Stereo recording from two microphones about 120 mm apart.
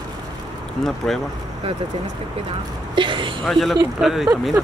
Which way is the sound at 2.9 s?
40° right (ahead or behind).